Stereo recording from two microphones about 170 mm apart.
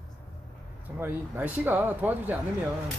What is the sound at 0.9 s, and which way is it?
Speech, 10° right (ahead or behind).